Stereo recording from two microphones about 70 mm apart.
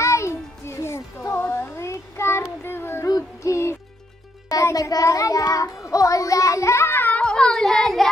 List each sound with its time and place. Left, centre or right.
0.0 s music: left
2.6 s child singing: left
3.1 s music: left
4.5 s child singing: left; by 8.1 s centre